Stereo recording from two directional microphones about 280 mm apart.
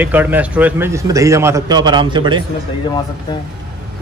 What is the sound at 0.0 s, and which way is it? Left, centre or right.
A man's voice, centre.